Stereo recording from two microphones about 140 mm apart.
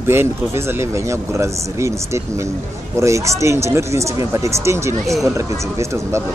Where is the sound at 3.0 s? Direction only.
20° right (ahead or behind).